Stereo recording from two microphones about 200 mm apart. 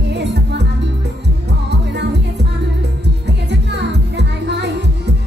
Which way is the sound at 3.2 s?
60° right (ahead or behind).